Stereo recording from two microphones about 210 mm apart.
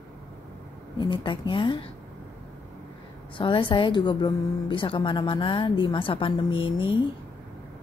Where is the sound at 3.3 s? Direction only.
25° left (ahead or behind).